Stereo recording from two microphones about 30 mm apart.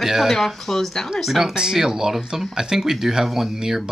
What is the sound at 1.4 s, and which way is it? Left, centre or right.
Speech, centre.